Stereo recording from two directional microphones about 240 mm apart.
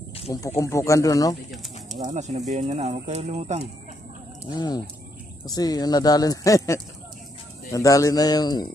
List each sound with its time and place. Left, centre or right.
0.3 s speech: centre
2.0 s speech: right
4.6 s speech: centre